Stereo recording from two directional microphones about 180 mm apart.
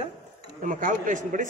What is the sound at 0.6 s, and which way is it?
Speech, 45° right (ahead or behind).